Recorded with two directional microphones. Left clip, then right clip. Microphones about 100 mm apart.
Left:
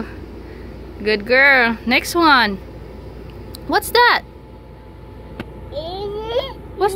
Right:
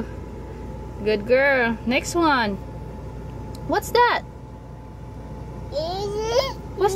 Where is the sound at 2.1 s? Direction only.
25° left (ahead or behind).